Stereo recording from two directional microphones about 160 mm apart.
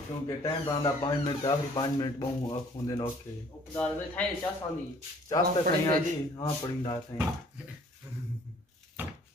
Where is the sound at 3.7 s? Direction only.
10° left (ahead or behind).